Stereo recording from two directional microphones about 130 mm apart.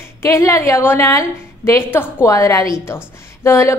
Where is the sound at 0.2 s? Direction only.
20° left (ahead or behind).